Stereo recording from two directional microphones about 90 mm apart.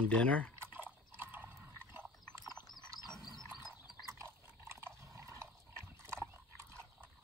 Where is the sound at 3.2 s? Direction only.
50° right (ahead or behind).